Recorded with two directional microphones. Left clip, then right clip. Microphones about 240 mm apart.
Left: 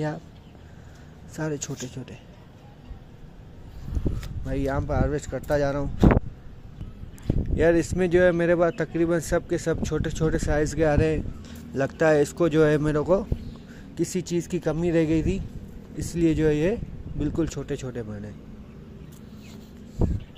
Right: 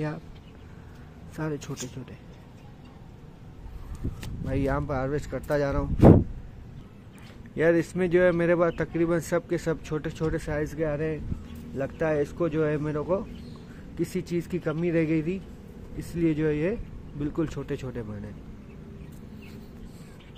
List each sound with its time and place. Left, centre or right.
1.3 s speech: centre
4.2 s speech: centre
7.5 s speech: centre
13.9 s speech: centre